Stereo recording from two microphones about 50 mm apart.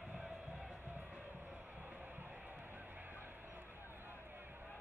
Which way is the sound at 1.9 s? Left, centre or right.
Right.